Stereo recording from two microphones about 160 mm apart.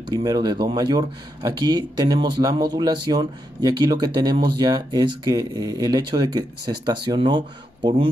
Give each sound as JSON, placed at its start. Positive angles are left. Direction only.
{"t": 0.0, "sound": "speech", "side_deg": -25}